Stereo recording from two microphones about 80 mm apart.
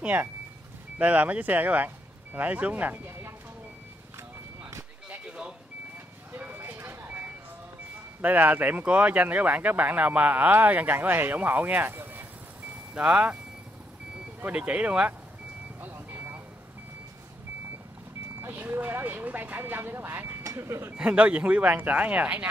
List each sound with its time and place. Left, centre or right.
0.0 s speech: right
5.1 s a sound: centre
6.3 s vehicle: right
8.2 s speech: right
12.9 s speech: centre
14.4 s speech: centre
15.8 s vehicle: right
18.4 s speech: right
20.9 s speech: centre